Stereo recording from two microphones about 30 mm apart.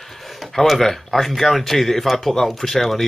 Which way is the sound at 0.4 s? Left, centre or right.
Centre.